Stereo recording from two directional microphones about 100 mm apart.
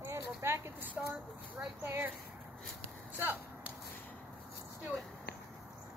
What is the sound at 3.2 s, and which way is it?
Whip, 20° right (ahead or behind).